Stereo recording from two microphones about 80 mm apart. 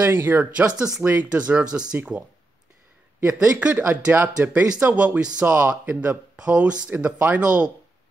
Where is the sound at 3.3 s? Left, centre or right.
Centre.